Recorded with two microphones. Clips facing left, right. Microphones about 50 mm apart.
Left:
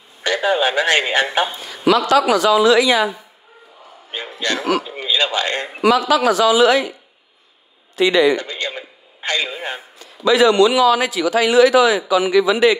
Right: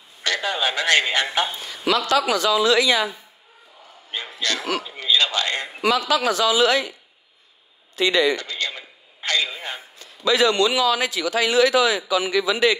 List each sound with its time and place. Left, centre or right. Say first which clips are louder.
0.2 s a man's voice: left 6 dB; centre
2.1 s a man's voice: left 4 dB; left
4.1 s a man's voice: left 4 dB; centre
5.9 s a man's voice: left 5 dB; left
7.9 s a man's voice: left 5 dB; left
8.4 s a man's voice: left 3 dB; left
9.9 s a man's voice: left 5 dB; left